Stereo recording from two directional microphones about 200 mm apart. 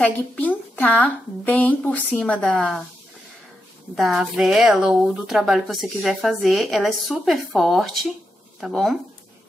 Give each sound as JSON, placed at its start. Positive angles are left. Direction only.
{"t": 0.0, "sound": "a woman's voice", "side_deg": 5}
{"t": 3.9, "sound": "speech", "side_deg": 0}